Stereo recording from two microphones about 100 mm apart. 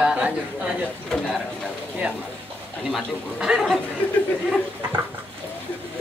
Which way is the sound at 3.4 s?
5° right (ahead or behind).